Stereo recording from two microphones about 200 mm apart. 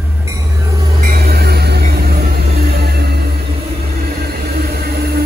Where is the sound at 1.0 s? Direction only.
50° right (ahead or behind).